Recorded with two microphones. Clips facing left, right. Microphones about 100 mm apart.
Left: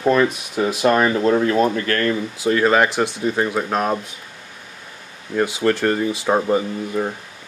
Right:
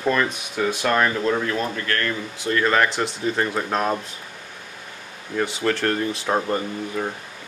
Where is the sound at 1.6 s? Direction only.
75° left (ahead or behind).